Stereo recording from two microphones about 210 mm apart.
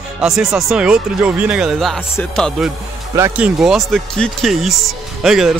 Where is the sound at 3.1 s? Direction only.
10° right (ahead or behind).